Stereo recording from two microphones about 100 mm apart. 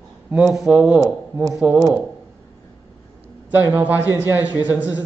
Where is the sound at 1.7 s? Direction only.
35° right (ahead or behind).